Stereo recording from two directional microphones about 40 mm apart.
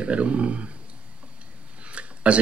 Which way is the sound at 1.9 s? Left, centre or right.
Right.